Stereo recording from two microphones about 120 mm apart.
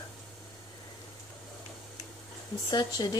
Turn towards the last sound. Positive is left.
turn(degrees=35)  # may be behind; listen again after turning